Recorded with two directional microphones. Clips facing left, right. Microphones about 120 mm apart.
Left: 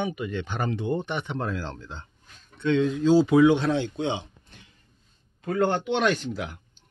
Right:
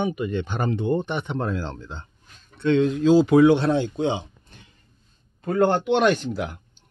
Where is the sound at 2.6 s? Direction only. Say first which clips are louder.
Right 3 dB; 60° right (ahead or behind).